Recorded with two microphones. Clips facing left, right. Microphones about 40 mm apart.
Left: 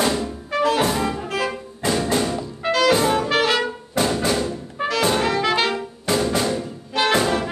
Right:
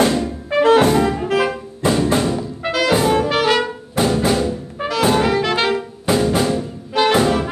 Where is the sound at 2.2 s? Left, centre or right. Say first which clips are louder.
Right 3 dB; centre.